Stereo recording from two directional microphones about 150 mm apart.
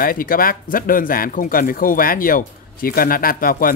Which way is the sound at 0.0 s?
70° left (ahead or behind).